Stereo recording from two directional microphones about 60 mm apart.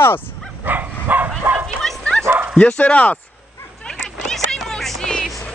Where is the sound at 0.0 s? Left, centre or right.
Left.